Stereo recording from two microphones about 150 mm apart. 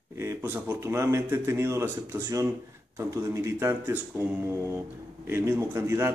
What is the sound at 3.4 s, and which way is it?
Speech, 15° right (ahead or behind).